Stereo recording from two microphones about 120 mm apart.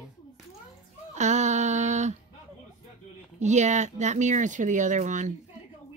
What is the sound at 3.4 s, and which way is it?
A woman's voice, 80° right.